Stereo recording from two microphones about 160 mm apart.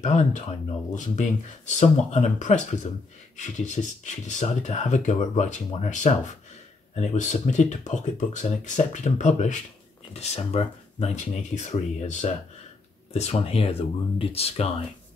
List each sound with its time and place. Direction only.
0.0 s speech: 45° left (ahead or behind)